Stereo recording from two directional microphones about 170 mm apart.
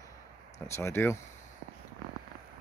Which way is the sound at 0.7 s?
15° left (ahead or behind).